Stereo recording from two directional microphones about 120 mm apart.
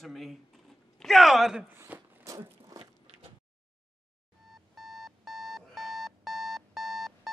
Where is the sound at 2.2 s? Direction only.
25° right (ahead or behind).